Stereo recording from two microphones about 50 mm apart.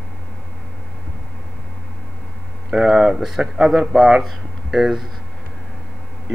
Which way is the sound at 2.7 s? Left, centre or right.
Centre.